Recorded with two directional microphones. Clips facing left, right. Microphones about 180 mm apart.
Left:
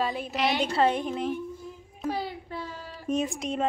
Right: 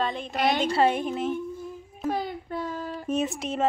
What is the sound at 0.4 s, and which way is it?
Speech, 50° right (ahead or behind).